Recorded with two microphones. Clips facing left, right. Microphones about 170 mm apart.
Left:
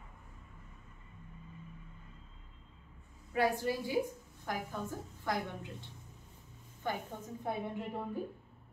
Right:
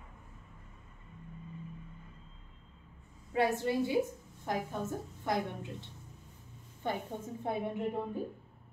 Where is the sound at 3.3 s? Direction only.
25° right (ahead or behind).